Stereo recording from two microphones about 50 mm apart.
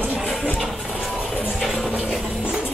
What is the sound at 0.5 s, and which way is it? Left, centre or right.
Music, centre.